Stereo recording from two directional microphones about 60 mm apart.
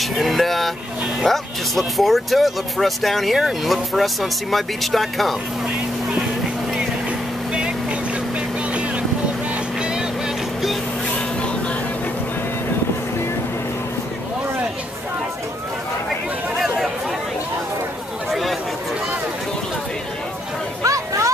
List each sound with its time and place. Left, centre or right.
0.0 s vehicle: centre
1.2 s speech: centre
7.1 s vehicle: centre
9.8 s vehicle: centre
16.5 s chatter: centre
18.3 s a sound: centre
20.8 s a sound: right